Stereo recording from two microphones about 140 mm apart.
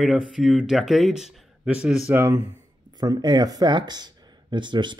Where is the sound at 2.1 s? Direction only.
15° right (ahead or behind).